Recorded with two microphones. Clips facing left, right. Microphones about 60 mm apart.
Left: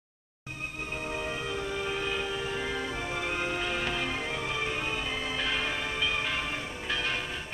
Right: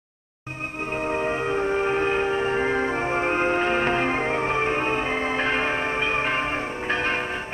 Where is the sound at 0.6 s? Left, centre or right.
Right.